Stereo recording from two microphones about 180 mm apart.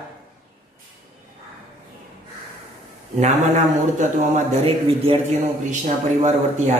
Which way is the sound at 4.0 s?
40° right (ahead or behind).